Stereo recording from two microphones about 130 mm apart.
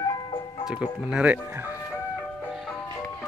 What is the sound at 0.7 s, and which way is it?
Speech, 5° right (ahead or behind).